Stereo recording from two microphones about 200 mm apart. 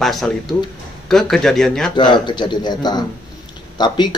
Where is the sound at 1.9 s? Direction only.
25° left (ahead or behind).